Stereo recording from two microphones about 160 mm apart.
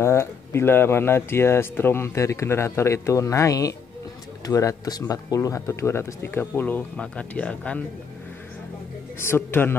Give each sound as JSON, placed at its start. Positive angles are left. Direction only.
{"t": 0.0, "sound": "speech", "side_deg": 15}
{"t": 9.2, "sound": "speech", "side_deg": 15}